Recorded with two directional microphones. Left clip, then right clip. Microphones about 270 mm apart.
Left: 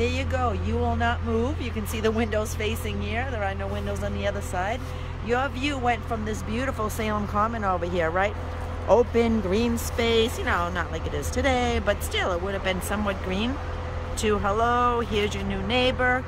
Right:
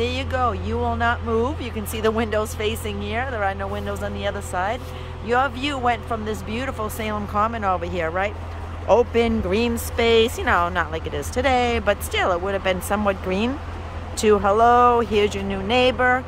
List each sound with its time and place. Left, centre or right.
0.0 s speech: centre